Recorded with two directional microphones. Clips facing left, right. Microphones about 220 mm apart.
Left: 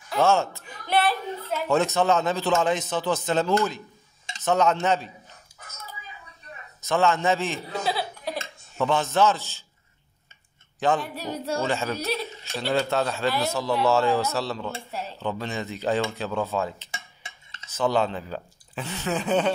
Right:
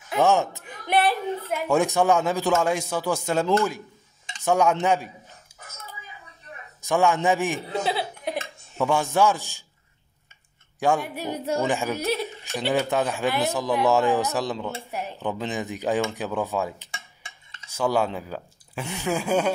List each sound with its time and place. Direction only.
0.1 s speech: 15° right (ahead or behind)
6.8 s a man's voice: 15° right (ahead or behind)
10.8 s speech: 10° right (ahead or behind)